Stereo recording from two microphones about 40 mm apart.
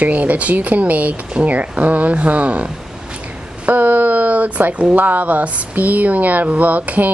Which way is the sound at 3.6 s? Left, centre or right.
Right.